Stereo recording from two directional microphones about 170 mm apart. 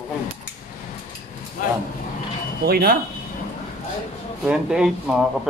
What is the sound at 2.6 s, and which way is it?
Speech, 65° right (ahead or behind).